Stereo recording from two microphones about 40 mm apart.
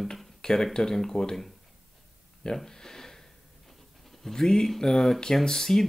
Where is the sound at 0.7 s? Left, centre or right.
Centre.